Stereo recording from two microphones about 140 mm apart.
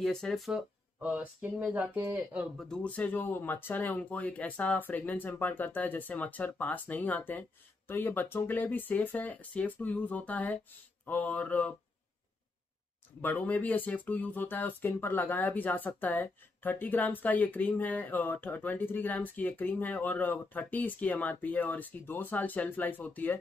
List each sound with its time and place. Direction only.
0.0 s speech: 5° left (ahead or behind)
2.5 s speech: 5° left (ahead or behind)
13.2 s speech: 10° left (ahead or behind)